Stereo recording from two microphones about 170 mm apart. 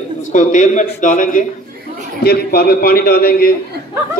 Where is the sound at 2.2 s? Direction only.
65° left (ahead or behind).